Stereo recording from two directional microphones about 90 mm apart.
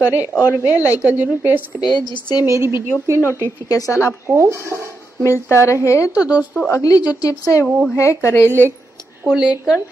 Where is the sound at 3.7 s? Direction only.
35° left (ahead or behind).